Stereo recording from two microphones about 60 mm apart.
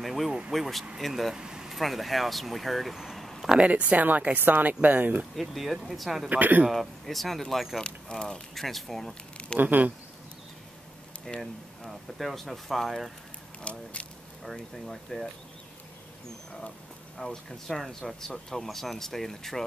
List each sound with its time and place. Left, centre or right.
0.0 s speech: centre
1.3 s vehicle: centre
1.8 s speech: centre
3.5 s speech: right
5.3 s speech: centre
6.2 s speech: right
6.7 s speech: centre
7.8 s speech: centre
9.6 s speech: right
11.8 s speech: centre
13.6 s speech: centre
14.4 s speech: centre
17.2 s speech: centre